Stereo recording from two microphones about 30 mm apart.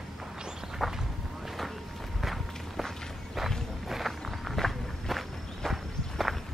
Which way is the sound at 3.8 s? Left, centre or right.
Centre.